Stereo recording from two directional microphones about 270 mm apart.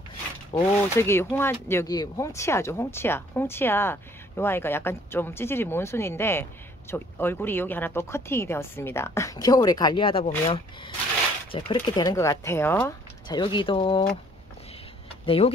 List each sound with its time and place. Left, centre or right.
0.5 s speech: centre
0.9 s speech: centre
15.2 s speech: left